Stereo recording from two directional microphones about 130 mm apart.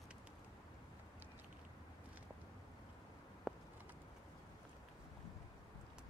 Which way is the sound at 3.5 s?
5° right (ahead or behind).